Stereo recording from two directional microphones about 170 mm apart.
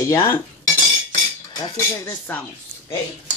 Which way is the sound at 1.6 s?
15° left (ahead or behind).